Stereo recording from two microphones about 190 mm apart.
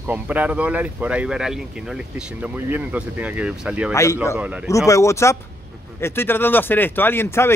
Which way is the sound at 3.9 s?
15° left (ahead or behind).